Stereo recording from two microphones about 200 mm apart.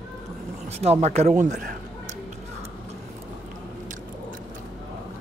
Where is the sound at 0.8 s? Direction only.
30° right (ahead or behind).